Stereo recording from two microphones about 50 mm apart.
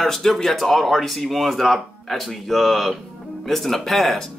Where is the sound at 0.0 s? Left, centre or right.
Centre.